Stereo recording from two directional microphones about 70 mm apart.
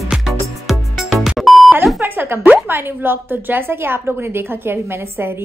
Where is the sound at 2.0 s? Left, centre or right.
Right.